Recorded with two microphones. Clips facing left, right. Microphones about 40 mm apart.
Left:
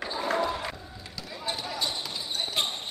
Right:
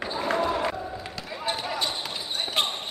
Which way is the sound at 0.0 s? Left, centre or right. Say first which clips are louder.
Right 2 dB; right.